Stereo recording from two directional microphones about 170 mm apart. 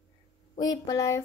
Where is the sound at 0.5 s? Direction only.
20° left (ahead or behind).